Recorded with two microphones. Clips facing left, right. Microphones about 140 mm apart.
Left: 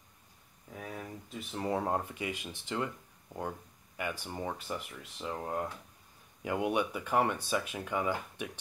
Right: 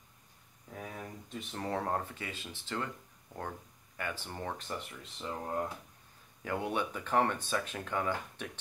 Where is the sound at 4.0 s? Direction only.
10° left (ahead or behind).